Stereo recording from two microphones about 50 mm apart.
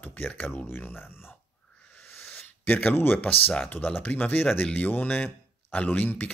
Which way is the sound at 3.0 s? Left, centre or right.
Left.